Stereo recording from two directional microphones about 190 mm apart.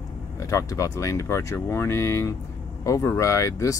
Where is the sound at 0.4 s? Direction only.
15° left (ahead or behind).